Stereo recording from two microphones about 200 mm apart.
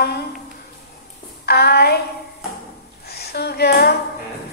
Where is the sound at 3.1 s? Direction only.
55° left (ahead or behind).